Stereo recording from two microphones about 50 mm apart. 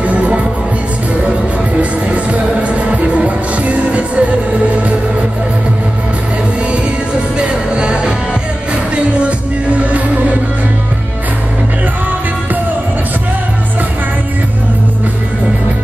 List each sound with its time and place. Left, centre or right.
0.0 s music: right
1.8 s music: right
7.3 s music: right